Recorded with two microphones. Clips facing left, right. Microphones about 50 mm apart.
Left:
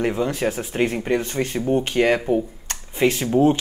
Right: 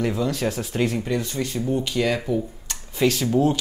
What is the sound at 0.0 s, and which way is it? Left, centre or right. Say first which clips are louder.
Speech: left 2 dB; left.